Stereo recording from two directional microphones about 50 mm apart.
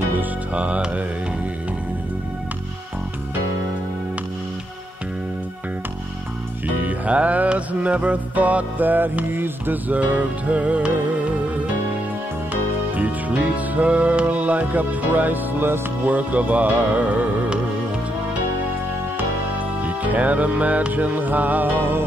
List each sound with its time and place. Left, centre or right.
0.2 s music: right
6.8 s music: right
12.9 s music: right
19.8 s music: right